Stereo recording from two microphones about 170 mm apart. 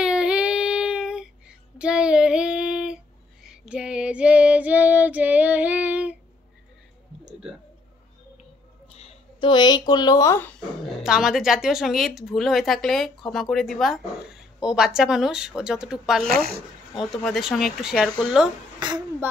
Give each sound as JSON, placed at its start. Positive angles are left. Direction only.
{"t": 0.0, "sound": "child singing", "side_deg": -5}
{"t": 3.4, "sound": "female singing", "side_deg": -5}
{"t": 8.9, "sound": "speech", "side_deg": 35}
{"t": 11.0, "sound": "a woman's voice", "side_deg": -5}
{"t": 16.3, "sound": "speech", "side_deg": -65}
{"t": 17.1, "sound": "a woman's voice", "side_deg": 0}